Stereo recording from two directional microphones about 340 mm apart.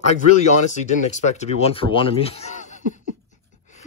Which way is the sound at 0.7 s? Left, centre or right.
Left.